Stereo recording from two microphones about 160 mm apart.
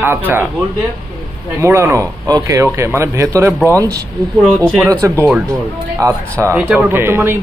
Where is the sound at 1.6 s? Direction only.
15° right (ahead or behind).